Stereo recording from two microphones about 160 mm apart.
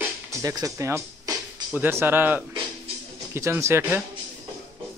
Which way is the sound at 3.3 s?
15° right (ahead or behind).